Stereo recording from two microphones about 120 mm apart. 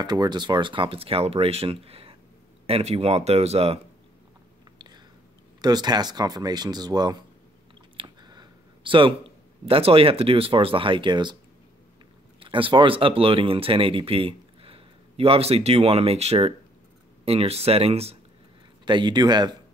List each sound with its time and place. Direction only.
0.0 s speech: 35° right (ahead or behind); by 3.8 s 55° right (ahead or behind)
4.7 s chewing: 35° right (ahead or behind)
5.6 s speech: 35° right (ahead or behind)
12.4 s speech: 45° right (ahead or behind)
18.9 s speech: 40° right (ahead or behind)